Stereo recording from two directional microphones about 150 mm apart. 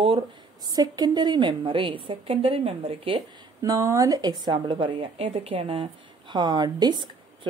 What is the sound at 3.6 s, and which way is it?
A woman's voice, 20° right (ahead or behind).